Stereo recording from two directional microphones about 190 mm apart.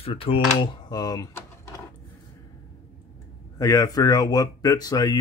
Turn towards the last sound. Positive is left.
turn(degrees=20)  # may be behind; listen again after turning